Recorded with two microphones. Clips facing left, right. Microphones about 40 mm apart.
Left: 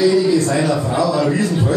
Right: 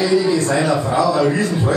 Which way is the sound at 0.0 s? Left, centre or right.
Right.